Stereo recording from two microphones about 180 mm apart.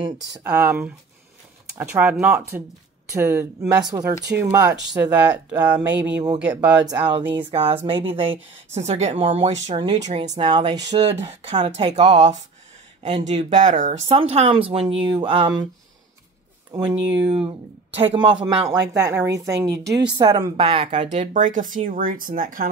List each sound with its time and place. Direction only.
0.3 s speech: 10° right (ahead or behind)
6.9 s speech: 25° right (ahead or behind)
9.9 s speech: 40° right (ahead or behind)
10.4 s speech: 25° right (ahead or behind)
11.1 s speech: 35° right (ahead or behind)
13.0 s speech: 40° right (ahead or behind)
16.7 s speech: 25° right (ahead or behind); by 22.7 s 50° right (ahead or behind)